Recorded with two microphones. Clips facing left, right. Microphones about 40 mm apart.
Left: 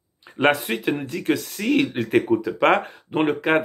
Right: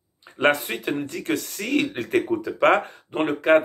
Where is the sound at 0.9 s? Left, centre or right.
Left.